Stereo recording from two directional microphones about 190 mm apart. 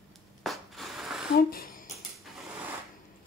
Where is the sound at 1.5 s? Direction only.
50° left (ahead or behind).